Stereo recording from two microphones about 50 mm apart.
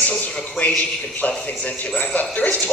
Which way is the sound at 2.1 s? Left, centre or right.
Left.